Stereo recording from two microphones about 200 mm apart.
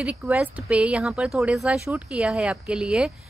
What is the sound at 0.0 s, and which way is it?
Speech, 5° right (ahead or behind).